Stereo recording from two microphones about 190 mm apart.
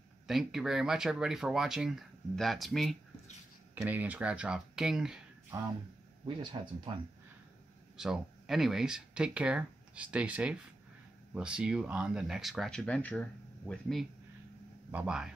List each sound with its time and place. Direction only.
0.3 s speech: centre (ahead or behind)
3.7 s speech: 10° right (ahead or behind)
6.5 s speech: 20° right (ahead or behind)
8.0 s speech: centre (ahead or behind)